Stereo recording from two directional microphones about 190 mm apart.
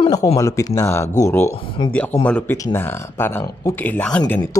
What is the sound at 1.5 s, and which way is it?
Speech, 25° left (ahead or behind).